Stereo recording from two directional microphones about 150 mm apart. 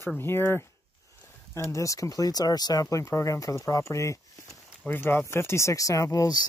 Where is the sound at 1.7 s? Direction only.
20° left (ahead or behind).